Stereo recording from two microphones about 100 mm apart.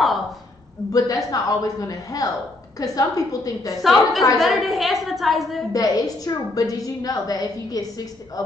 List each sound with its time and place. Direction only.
0.9 s a woman's voice: 35° left (ahead or behind)
3.8 s a woman's voice: centre (ahead or behind)
5.7 s a woman's voice: 35° left (ahead or behind)